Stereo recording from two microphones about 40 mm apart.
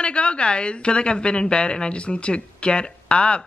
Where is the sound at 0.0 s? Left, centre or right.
Left.